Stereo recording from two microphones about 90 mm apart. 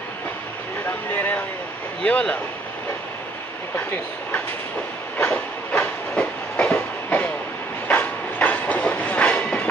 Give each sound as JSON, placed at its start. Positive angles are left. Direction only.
{"t": 1.1, "sound": "speech", "side_deg": 20}
{"t": 3.7, "sound": "speech", "side_deg": 20}
{"t": 5.2, "sound": "train", "side_deg": 15}